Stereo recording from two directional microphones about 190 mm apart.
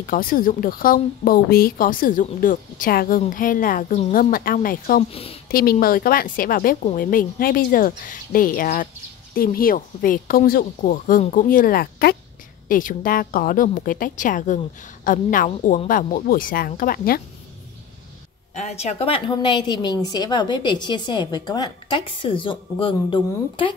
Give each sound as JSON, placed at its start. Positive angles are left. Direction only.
{"t": 0.0, "sound": "a woman's voice", "side_deg": 50}
{"t": 5.1, "sound": "a woman's voice", "side_deg": 30}
{"t": 5.5, "sound": "a woman's voice", "side_deg": 50}
{"t": 18.5, "sound": "a woman's voice", "side_deg": 35}